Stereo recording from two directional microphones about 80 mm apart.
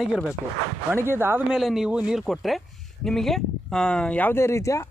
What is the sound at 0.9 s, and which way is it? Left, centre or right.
Speech, right.